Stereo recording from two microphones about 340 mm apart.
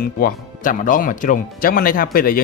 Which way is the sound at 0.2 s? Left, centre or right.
Left.